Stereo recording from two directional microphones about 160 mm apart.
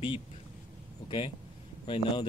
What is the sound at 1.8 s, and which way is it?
Speech, 35° left (ahead or behind).